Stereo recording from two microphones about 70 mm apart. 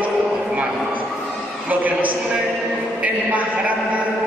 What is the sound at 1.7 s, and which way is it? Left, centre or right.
A man's voice, right.